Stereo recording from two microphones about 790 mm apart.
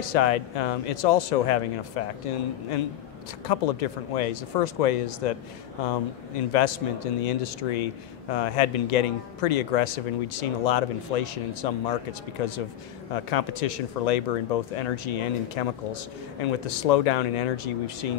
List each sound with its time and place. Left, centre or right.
0.0 s a man's voice: left
3.4 s a man's voice: left
6.5 s a man's voice: left